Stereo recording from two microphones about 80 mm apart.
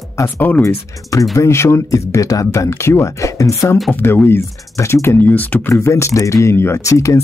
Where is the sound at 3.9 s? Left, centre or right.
Left.